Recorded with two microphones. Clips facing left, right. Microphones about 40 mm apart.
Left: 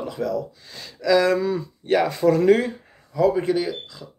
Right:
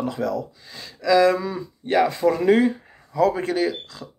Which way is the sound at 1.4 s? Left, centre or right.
Centre.